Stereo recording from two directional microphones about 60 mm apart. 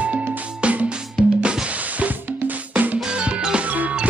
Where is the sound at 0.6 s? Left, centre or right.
Centre.